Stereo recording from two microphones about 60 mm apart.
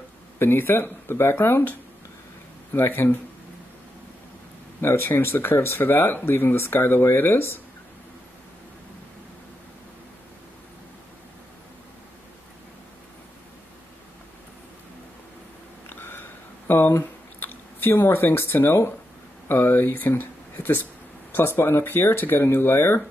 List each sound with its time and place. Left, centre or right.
0.4 s speech: left
4.8 s speech: left
15.9 s a sound: left
19.4 s speech: left